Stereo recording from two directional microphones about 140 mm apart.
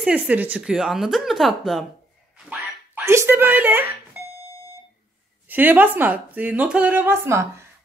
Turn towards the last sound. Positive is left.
turn(degrees=-20)  # may be behind; listen again after turning